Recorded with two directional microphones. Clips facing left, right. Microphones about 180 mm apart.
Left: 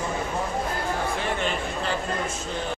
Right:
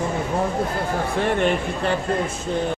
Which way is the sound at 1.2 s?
55° right (ahead or behind).